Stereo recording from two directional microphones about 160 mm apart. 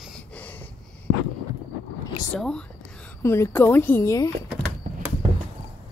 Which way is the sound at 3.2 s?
15° left (ahead or behind).